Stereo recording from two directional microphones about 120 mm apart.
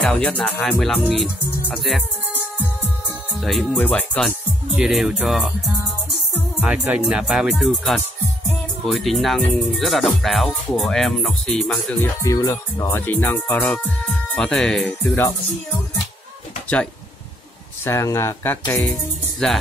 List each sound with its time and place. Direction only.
0.0 s speech: 5° left (ahead or behind)
3.3 s speech: centre (ahead or behind)
3.7 s music: 10° left (ahead or behind)
4.7 s speech: 5° right (ahead or behind)
6.6 s speech: 10° right (ahead or behind); by 12.0 s 5° left (ahead or behind)
12.0 s music: 25° left (ahead or behind); by 15.1 s 5° left (ahead or behind)
17.8 s speech: 20° left (ahead or behind)